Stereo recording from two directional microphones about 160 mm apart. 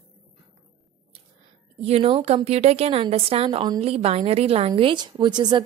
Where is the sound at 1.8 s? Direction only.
35° right (ahead or behind).